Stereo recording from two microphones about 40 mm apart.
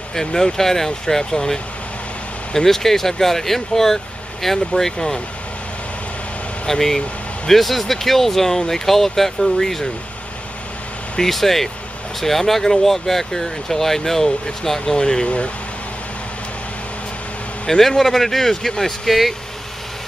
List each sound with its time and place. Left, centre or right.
0.1 s speech: centre
6.7 s speech: centre
11.1 s speech: centre
15.2 s speech: left
17.6 s speech: centre